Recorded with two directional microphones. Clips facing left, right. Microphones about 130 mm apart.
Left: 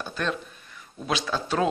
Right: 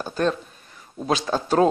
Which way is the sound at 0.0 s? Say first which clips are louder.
Right 6 dB; 40° right (ahead or behind).